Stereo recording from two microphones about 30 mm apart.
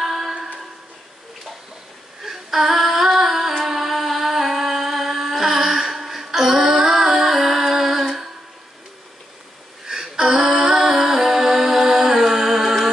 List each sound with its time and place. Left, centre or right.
0.0 s music: centre
2.2 s female singing: centre
3.6 s music: centre
9.8 s a sound: centre
10.6 s music: centre